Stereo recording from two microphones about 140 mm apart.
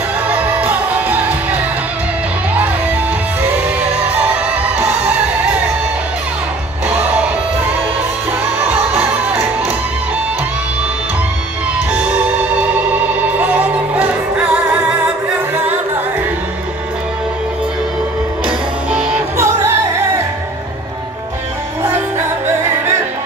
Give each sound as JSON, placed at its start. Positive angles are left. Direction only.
{"t": 0.3, "sound": "music", "side_deg": -10}
{"t": 4.2, "sound": "music", "side_deg": -10}
{"t": 8.3, "sound": "music", "side_deg": -15}
{"t": 12.9, "sound": "music", "side_deg": -10}
{"t": 18.9, "sound": "music", "side_deg": -5}
{"t": 19.3, "sound": "music", "side_deg": -20}